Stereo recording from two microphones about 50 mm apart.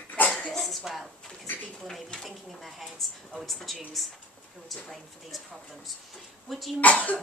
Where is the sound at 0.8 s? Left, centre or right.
Centre.